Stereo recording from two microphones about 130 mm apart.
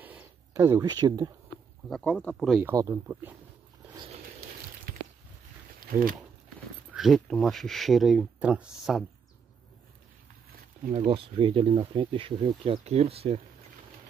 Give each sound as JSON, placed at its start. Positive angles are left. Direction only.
{"t": 0.5, "sound": "speech", "side_deg": -25}
{"t": 1.9, "sound": "speech", "side_deg": 5}
{"t": 2.6, "sound": "speech", "side_deg": -20}
{"t": 5.8, "sound": "a sound", "side_deg": -90}
{"t": 6.9, "sound": "speech", "side_deg": 0}
{"t": 11.1, "sound": "speech", "side_deg": -45}
{"t": 12.8, "sound": "speech", "side_deg": -55}